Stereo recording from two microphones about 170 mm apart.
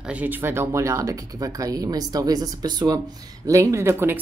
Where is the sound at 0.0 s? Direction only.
10° right (ahead or behind).